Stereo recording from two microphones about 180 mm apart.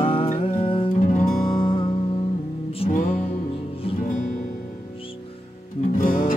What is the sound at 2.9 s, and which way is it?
Music, 50° left (ahead or behind).